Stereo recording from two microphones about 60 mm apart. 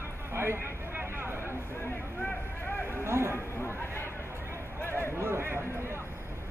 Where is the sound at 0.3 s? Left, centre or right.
Right.